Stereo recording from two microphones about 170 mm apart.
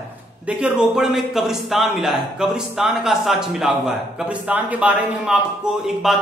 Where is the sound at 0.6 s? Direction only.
5° right (ahead or behind).